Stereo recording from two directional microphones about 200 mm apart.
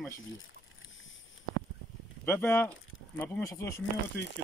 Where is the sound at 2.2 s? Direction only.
10° left (ahead or behind).